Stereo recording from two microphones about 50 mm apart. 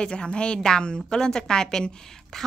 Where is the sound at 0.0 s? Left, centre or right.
Centre.